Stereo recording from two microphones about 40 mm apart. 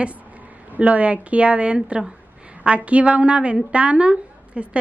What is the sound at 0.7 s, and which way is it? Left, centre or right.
A woman's voice, right.